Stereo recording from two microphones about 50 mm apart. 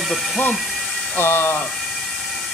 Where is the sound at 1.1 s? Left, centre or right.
Left.